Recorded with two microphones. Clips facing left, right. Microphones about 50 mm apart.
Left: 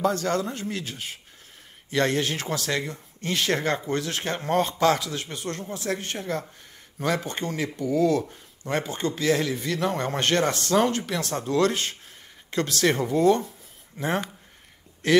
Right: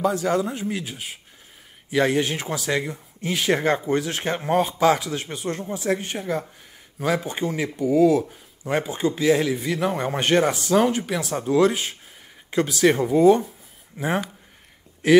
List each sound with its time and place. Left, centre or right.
0.0 s speech: centre
4.4 s speech: centre